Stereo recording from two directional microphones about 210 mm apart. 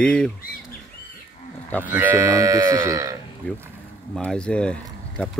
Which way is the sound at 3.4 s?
5° left (ahead or behind).